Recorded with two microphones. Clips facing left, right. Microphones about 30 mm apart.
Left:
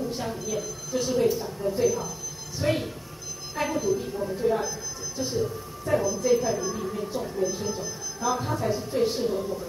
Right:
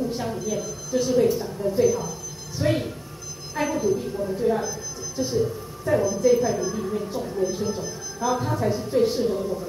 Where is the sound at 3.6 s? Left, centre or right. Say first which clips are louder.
Right 3 dB; centre.